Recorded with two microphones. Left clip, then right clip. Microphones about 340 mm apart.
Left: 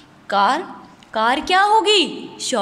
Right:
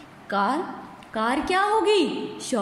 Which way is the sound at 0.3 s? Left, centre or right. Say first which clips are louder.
Left 7 dB; left.